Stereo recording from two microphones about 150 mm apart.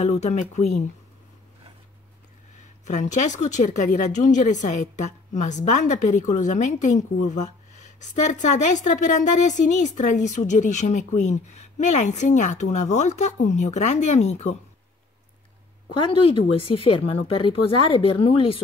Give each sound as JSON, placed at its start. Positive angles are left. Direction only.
{"t": 0.0, "sound": "speech", "side_deg": 50}
{"t": 2.8, "sound": "speech", "side_deg": 50}
{"t": 15.9, "sound": "speech", "side_deg": 35}